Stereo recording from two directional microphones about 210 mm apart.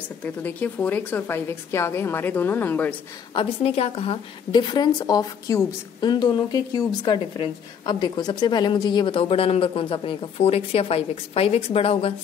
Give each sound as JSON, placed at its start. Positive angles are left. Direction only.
{"t": 0.2, "sound": "a woman's voice", "side_deg": 10}
{"t": 3.3, "sound": "a woman's voice", "side_deg": 30}